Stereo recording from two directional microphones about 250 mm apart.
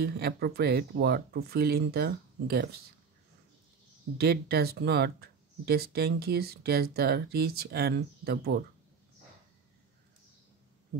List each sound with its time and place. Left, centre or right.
0.0 s speech: right
4.2 s speech: right